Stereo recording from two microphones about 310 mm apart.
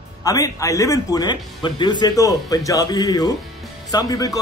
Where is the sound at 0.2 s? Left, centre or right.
Centre.